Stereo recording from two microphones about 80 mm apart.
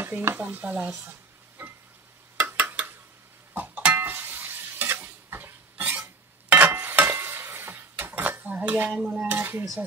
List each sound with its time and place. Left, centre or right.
0.0 s speech: right
1.6 s stir: right
2.3 s a sound: centre
3.5 s stir: right
6.5 s dishes: right
9.0 s speech: centre